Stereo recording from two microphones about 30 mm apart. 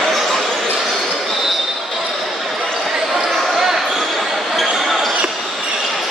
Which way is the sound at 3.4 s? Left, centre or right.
Centre.